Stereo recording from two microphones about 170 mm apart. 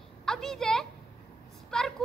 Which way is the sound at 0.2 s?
5° left (ahead or behind).